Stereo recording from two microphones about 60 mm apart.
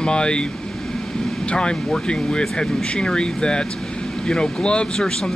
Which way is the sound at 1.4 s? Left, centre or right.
Centre.